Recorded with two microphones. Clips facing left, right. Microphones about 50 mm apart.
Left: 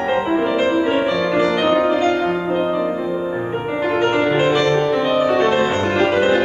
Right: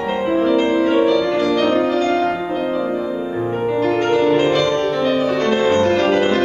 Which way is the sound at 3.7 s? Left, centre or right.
Centre.